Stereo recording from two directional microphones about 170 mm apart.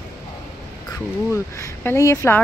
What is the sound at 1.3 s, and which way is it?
Speech, 15° left (ahead or behind).